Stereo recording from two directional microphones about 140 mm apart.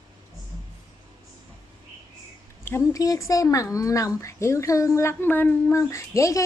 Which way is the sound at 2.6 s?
20° left (ahead or behind).